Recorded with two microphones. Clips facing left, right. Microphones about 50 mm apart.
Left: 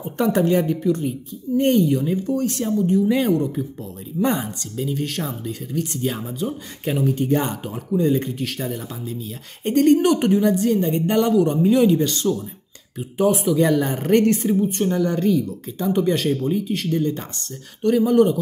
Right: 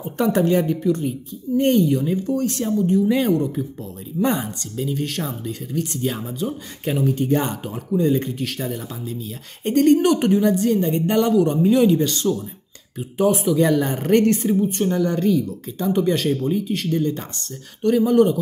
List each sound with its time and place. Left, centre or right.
0.0 s a woman's voice: centre